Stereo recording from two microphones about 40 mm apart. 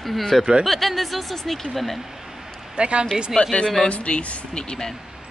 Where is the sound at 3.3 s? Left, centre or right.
Left.